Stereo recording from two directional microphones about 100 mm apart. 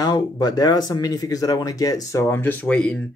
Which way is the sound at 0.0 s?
40° left (ahead or behind).